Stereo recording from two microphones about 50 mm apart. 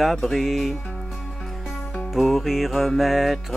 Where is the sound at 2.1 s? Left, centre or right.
Centre.